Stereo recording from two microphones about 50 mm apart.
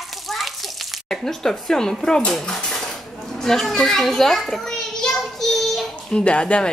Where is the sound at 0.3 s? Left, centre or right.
Centre.